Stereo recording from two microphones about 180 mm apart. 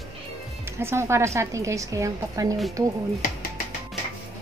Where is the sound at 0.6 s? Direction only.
15° right (ahead or behind).